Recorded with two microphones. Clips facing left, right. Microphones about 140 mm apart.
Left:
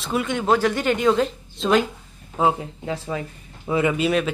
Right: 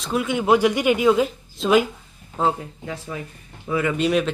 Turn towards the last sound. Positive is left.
turn(degrees=0)  # may be behind; listen again after turning